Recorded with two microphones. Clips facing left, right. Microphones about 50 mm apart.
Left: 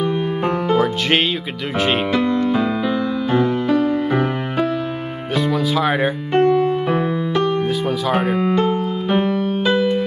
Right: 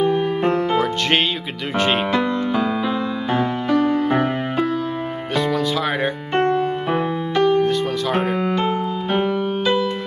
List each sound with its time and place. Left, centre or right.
1.8 s speech: centre
2.8 s music: centre
3.7 s music: right
5.3 s music: centre
9.2 s keyboard: centre